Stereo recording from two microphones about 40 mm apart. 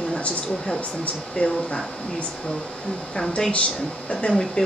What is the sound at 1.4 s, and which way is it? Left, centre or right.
Speech, left.